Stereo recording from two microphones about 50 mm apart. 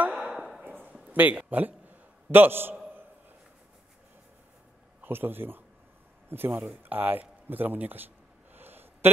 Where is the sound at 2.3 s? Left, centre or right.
Right.